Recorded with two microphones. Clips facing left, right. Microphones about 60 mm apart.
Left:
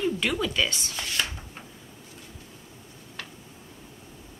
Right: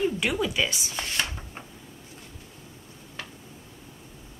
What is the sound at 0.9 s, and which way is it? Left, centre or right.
Speech, right.